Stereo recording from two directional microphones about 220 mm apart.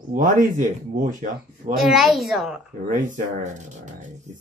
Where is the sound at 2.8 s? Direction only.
35° right (ahead or behind).